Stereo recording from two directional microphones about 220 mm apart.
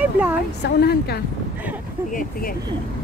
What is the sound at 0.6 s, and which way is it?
Speech, 45° left (ahead or behind).